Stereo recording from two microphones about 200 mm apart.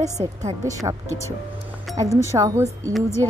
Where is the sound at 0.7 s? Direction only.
15° right (ahead or behind).